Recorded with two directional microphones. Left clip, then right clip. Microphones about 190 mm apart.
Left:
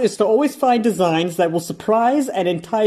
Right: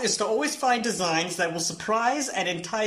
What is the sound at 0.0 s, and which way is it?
Speech, 45° left (ahead or behind).